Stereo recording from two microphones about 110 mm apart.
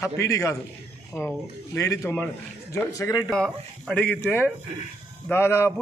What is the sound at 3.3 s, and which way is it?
A man's voice, 5° left (ahead or behind).